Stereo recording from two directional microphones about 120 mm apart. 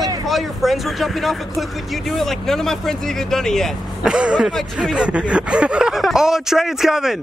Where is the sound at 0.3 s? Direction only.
Centre (ahead or behind).